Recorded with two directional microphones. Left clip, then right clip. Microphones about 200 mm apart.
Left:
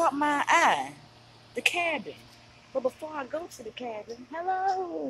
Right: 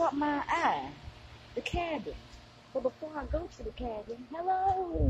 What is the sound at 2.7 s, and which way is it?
Speech, 35° left (ahead or behind).